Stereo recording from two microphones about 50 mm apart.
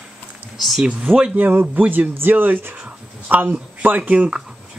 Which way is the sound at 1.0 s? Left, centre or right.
Right.